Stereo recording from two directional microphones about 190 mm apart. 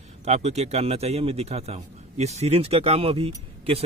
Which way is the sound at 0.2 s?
35° right (ahead or behind).